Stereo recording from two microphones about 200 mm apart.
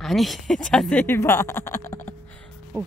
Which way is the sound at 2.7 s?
10° right (ahead or behind).